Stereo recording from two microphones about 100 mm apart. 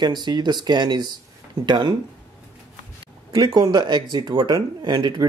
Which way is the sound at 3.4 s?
60° right (ahead or behind).